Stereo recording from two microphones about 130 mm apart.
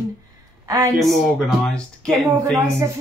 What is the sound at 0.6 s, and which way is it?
Speech, 25° right (ahead or behind).